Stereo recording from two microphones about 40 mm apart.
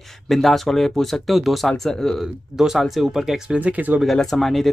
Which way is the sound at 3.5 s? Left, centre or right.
Right.